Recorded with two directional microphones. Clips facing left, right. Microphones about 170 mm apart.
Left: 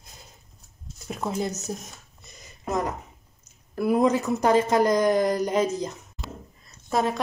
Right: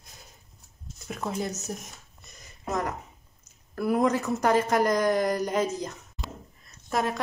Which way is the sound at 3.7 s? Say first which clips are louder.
Left 3 dB; 20° left (ahead or behind).